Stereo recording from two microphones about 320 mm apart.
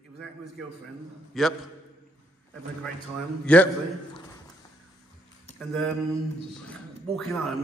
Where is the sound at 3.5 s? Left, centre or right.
Centre.